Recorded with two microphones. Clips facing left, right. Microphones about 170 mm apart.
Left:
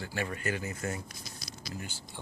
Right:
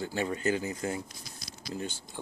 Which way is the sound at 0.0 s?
20° right (ahead or behind).